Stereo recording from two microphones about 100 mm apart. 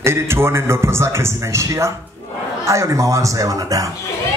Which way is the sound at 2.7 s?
30° right (ahead or behind).